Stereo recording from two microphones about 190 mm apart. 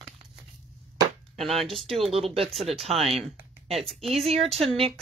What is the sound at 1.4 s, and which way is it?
Speech, centre (ahead or behind).